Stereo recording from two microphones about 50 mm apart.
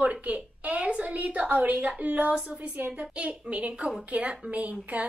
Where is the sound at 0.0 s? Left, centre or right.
Right.